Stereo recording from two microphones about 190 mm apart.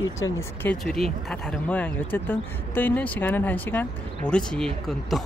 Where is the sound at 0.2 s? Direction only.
15° left (ahead or behind).